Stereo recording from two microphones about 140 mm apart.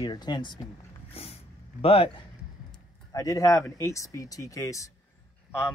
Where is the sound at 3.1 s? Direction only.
25° left (ahead or behind).